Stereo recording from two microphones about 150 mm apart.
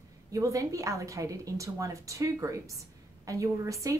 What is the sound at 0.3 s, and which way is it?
A woman's voice, 20° right (ahead or behind).